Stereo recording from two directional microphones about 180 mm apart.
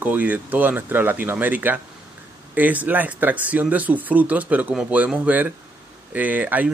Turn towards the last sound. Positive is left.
turn(degrees=-10)  # may be behind; listen again after turning